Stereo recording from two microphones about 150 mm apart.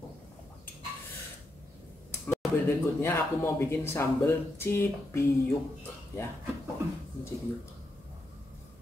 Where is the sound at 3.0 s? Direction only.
15° left (ahead or behind).